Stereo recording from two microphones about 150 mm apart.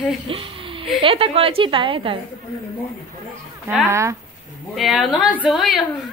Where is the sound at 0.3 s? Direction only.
35° right (ahead or behind).